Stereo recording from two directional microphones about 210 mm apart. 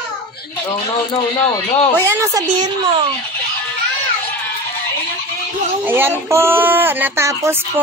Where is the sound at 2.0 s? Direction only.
15° right (ahead or behind).